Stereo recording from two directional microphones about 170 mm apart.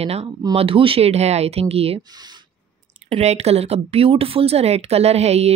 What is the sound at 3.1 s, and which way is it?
Speech, 40° right (ahead or behind).